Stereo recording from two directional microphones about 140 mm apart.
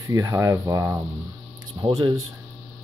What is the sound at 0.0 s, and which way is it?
Speech, 25° right (ahead or behind).